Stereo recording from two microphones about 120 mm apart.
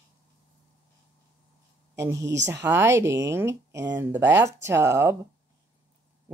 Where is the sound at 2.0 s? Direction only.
25° right (ahead or behind).